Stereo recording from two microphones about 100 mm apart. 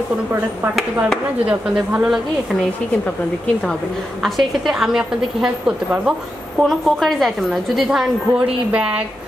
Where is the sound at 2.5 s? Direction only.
Centre (ahead or behind).